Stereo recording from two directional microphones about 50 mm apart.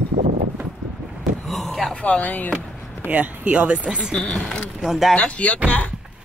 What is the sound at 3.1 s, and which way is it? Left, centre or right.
Speech, right.